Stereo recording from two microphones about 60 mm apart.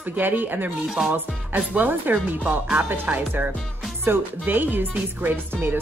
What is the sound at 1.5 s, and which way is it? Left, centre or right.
A woman's voice, right.